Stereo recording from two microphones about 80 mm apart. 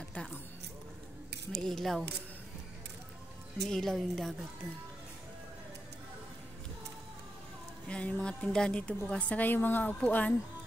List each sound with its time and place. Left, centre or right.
0.1 s a sound: centre
1.5 s a woman's voice: centre
3.6 s a woman's voice: centre
7.9 s a woman's voice: centre